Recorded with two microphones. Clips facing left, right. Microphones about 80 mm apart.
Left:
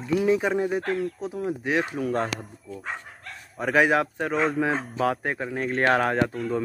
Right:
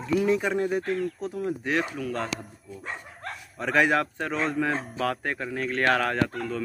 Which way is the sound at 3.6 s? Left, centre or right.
Centre.